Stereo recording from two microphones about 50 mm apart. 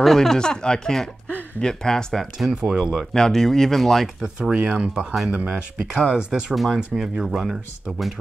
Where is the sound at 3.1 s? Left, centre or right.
Centre.